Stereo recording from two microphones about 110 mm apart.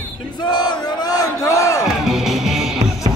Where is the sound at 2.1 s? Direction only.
Centre (ahead or behind).